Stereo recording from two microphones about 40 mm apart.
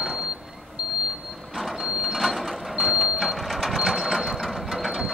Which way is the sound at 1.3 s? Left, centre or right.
Centre.